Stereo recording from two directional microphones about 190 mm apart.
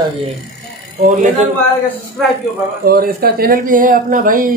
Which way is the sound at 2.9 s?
50° right (ahead or behind).